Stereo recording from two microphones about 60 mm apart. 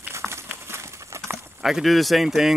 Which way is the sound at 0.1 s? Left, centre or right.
Right.